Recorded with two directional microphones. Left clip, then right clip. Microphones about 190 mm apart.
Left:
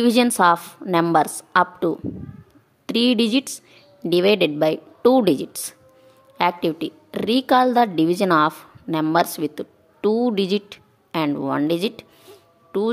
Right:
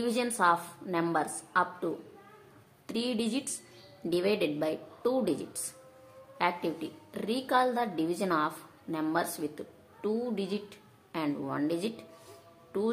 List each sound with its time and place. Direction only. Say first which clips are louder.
0.0 s a woman's voice: left 11 dB; 55° left (ahead or behind)